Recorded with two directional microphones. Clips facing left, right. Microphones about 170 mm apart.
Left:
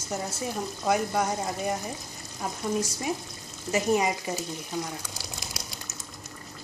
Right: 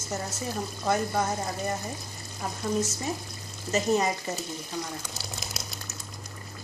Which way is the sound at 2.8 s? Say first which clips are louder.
Even; 10° left (ahead or behind).